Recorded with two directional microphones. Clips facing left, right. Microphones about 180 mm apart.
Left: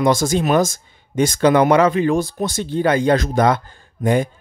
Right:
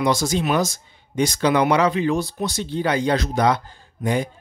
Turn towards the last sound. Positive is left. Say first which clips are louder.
# left 5 dB
turn(degrees=50)  # may be behind; listen again after turning